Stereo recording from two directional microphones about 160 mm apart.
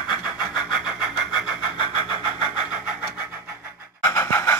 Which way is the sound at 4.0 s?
15° left (ahead or behind).